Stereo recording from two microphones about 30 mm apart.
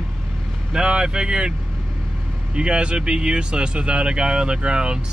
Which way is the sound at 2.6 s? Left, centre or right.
Right.